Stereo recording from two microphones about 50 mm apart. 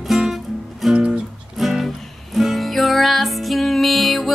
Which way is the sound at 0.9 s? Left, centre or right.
Centre.